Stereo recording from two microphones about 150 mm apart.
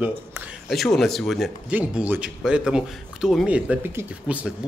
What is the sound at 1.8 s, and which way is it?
Speech, 10° right (ahead or behind).